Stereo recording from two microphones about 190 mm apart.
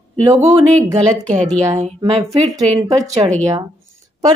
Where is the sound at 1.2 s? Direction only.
40° right (ahead or behind).